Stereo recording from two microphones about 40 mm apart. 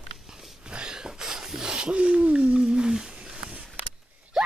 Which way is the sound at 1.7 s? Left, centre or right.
Right.